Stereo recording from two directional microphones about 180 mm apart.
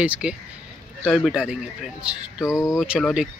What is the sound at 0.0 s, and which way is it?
Speech, 5° right (ahead or behind).